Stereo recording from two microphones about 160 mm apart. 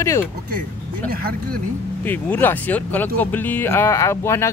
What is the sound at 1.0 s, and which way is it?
Speech, 70° right (ahead or behind).